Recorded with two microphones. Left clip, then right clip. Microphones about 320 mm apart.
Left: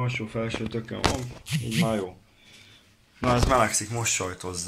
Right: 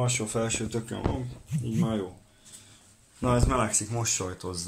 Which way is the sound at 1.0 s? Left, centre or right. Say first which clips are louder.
Left 7 dB; left.